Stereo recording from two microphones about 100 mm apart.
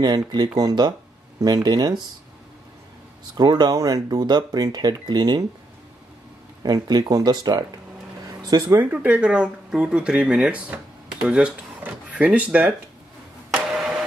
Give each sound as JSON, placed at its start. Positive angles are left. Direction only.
{"t": 0.0, "sound": "speech", "side_deg": -45}
{"t": 3.3, "sound": "speech", "side_deg": -45}
{"t": 6.6, "sound": "speech", "side_deg": -40}
{"t": 8.6, "sound": "speech", "side_deg": -15}